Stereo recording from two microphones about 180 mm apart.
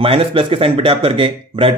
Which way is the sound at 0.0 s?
30° right (ahead or behind).